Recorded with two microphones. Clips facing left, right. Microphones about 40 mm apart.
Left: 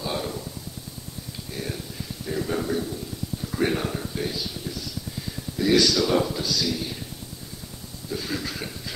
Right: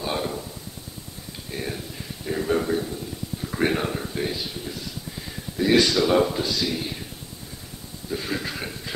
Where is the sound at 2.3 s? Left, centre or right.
Centre.